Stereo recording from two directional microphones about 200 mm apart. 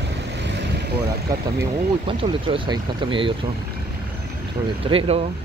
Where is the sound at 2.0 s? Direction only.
25° right (ahead or behind).